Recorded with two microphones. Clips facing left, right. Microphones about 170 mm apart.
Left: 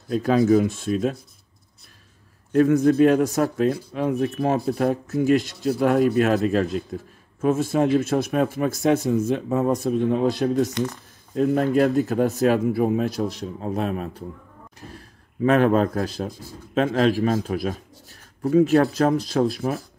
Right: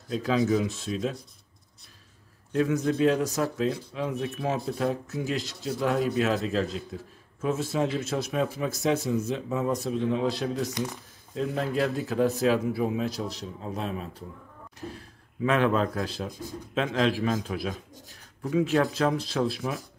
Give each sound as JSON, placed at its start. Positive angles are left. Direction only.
{"t": 0.1, "sound": "speech", "side_deg": 55}
{"t": 2.5, "sound": "speech", "side_deg": 50}
{"t": 15.4, "sound": "speech", "side_deg": 45}